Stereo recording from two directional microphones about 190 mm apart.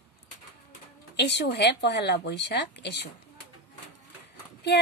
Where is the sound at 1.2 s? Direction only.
65° left (ahead or behind).